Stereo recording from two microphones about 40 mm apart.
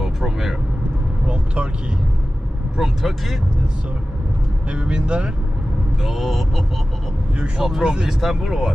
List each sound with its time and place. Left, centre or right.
0.0 s vehicle: centre
1.2 s vehicle: right
2.8 s speech: centre
4.6 s speech: right
6.0 s speech: centre
7.6 s speech: centre
8.2 s speech: centre